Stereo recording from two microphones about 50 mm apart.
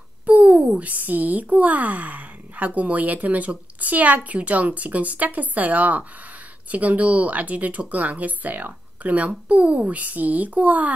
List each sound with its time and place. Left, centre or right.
0.3 s speech: right